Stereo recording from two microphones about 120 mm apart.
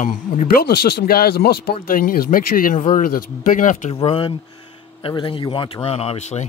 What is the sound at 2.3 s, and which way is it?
Speech, 90° left.